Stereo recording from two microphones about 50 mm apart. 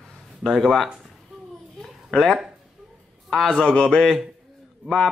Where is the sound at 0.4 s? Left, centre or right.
Centre.